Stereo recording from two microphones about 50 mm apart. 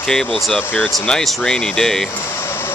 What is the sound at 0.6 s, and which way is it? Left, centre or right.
Speech, left.